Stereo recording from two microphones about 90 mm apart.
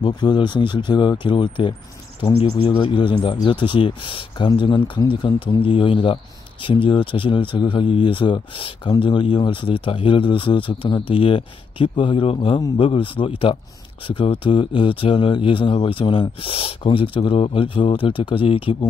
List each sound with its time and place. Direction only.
0.0 s speech: 55° left (ahead or behind)
2.3 s speech: 90° left
9.0 s speech: 70° left (ahead or behind)